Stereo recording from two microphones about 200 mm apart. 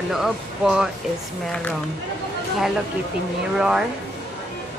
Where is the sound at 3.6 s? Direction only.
5° right (ahead or behind).